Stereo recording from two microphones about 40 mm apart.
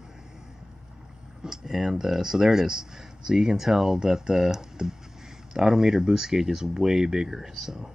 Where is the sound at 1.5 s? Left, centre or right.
Centre.